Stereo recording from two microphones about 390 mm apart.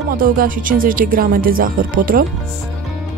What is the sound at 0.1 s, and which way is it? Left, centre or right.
Speech, right.